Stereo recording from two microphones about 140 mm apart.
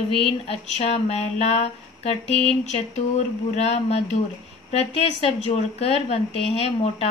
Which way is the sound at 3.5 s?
50° left (ahead or behind).